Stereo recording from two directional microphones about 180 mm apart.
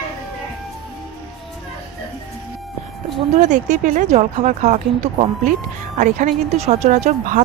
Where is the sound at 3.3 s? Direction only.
40° right (ahead or behind).